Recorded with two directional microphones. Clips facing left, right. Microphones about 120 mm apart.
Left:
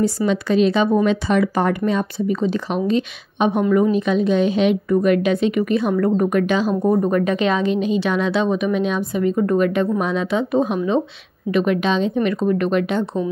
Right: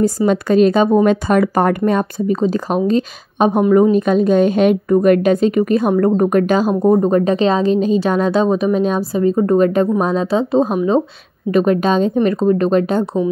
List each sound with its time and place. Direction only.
0.3 s a woman's voice: 45° right (ahead or behind)